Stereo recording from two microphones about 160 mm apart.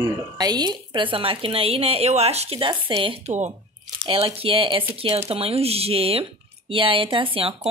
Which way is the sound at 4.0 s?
35° right (ahead or behind).